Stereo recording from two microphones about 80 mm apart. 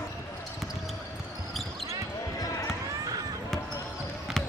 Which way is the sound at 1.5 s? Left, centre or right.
Centre.